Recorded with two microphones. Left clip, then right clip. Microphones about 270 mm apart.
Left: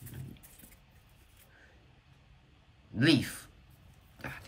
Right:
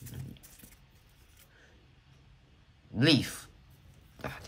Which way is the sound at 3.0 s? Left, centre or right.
Centre.